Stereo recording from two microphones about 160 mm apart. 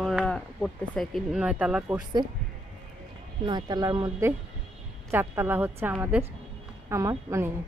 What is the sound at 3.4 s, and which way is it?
Speech, 25° right (ahead or behind).